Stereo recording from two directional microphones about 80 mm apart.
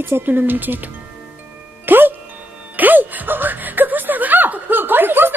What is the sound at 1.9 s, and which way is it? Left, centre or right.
Music, right.